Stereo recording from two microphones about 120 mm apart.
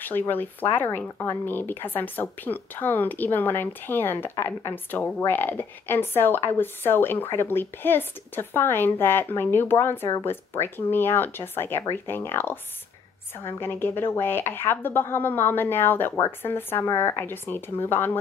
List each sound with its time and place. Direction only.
0.0 s speech: 15° left (ahead or behind)